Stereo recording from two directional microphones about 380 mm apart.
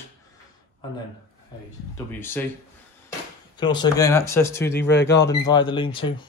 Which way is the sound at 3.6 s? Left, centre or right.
Centre.